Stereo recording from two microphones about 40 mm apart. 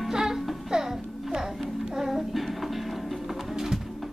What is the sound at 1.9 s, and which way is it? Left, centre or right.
Music, centre.